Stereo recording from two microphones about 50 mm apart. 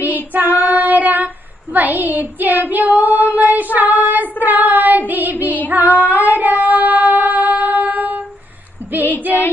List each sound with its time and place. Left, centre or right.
0.3 s child singing: right
3.3 s female singing: right
3.7 s child singing: right